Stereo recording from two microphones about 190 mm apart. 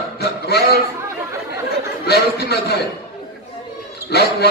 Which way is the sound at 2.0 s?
60° left (ahead or behind).